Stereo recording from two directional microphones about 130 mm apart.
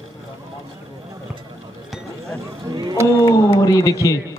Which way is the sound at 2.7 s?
30° right (ahead or behind).